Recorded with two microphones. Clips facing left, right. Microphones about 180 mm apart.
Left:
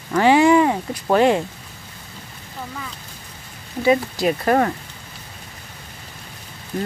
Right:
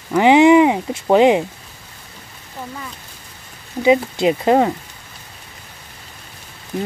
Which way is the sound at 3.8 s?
20° right (ahead or behind).